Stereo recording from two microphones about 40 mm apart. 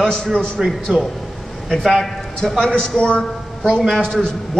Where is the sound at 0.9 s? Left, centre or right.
Right.